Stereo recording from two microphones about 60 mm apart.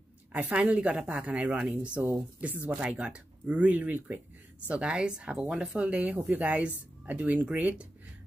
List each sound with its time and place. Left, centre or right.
0.3 s a woman's voice: right
2.8 s a woman's voice: centre